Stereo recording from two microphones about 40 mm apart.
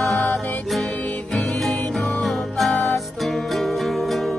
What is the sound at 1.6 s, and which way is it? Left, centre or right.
Music, centre.